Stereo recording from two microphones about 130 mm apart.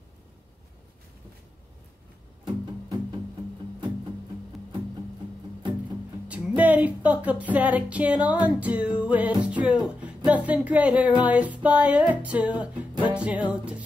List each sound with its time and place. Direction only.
2.4 s music: 35° right (ahead or behind)
5.6 s music: 40° right (ahead or behind)
6.2 s music: 10° right (ahead or behind)